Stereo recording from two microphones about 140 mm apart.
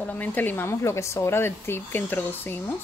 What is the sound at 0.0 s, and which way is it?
Speech, 10° left (ahead or behind).